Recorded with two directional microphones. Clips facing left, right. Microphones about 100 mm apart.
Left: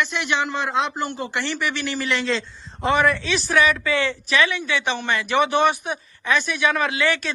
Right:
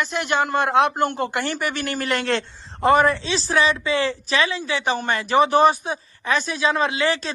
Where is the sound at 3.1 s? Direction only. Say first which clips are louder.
Left 1 dB; 30° right (ahead or behind).